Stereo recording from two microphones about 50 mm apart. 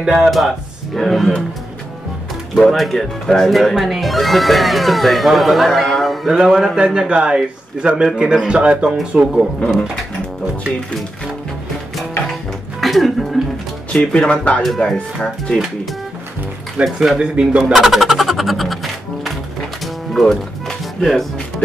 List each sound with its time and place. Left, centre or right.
0.0 s speech: centre
2.6 s speech: centre
6.3 s a man's voice: centre
9.6 s speech: centre
12.8 s speech: centre
13.9 s speech: centre
14.8 s speech: centre
16.8 s speech: centre
17.2 s speech: right
17.7 s music: centre
21.0 s speech: centre